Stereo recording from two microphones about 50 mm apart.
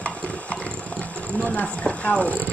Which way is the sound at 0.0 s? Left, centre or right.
Left.